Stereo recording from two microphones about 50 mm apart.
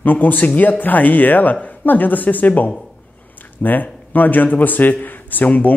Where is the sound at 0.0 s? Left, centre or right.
Left.